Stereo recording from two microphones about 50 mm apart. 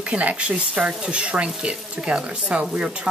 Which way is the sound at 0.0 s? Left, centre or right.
Right.